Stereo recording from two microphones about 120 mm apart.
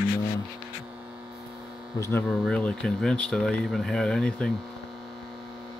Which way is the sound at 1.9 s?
25° left (ahead or behind).